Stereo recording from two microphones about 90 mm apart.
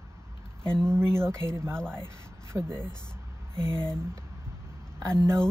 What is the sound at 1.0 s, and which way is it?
Speech, 10° left (ahead or behind).